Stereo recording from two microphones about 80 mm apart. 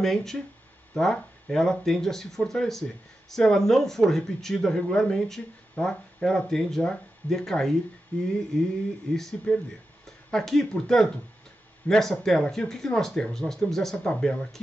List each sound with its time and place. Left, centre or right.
0.0 s speech: centre